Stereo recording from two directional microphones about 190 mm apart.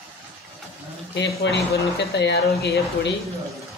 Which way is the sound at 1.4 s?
65° left (ahead or behind).